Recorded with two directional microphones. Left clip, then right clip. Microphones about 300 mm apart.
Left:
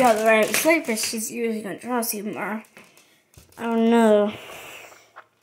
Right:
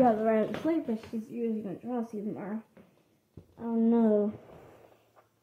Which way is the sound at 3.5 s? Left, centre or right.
Left.